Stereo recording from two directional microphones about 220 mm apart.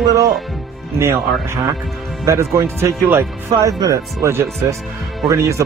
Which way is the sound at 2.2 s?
15° right (ahead or behind).